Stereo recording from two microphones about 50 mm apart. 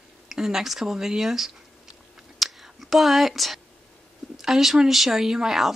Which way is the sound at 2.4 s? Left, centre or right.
Centre.